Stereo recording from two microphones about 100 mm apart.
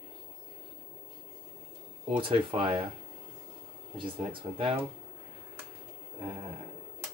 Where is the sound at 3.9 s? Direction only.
55° right (ahead or behind).